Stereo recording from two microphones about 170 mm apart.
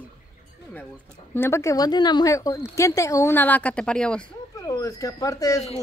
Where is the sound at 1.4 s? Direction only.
15° left (ahead or behind).